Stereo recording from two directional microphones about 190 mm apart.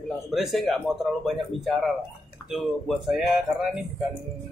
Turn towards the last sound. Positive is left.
turn(degrees=-5)  # may be behind; listen again after turning